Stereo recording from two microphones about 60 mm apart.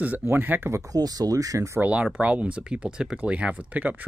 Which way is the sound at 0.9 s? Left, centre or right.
Right.